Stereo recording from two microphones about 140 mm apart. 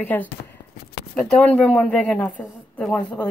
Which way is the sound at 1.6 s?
10° left (ahead or behind).